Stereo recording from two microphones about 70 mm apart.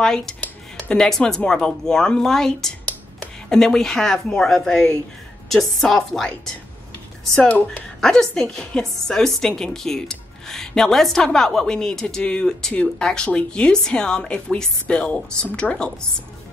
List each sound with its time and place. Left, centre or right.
0.0 s a woman's voice: centre
7.4 s speech: centre
8.0 s a woman's voice: centre